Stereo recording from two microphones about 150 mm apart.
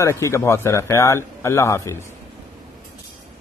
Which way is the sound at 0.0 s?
20° left (ahead or behind).